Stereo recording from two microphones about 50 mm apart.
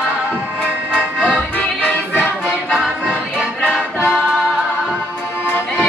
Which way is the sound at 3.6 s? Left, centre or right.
Centre.